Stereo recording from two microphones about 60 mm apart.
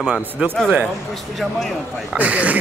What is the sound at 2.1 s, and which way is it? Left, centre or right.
Speech, right.